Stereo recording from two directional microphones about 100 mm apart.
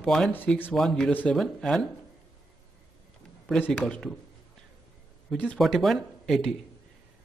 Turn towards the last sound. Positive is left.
turn(degrees=0)  # may be behind; listen again after turning